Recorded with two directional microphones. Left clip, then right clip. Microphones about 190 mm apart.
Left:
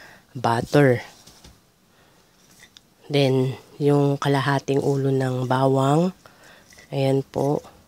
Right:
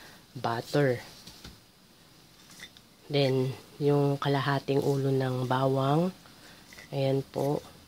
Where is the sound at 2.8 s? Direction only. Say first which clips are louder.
Left 6 dB; 35° left (ahead or behind).